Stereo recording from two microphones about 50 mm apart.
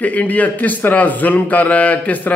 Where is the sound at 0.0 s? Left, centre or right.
Left.